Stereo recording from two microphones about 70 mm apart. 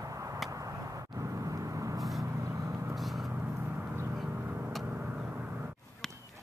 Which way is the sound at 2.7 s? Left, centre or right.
Right.